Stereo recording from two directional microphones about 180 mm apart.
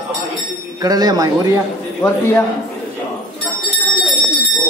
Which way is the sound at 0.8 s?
20° right (ahead or behind).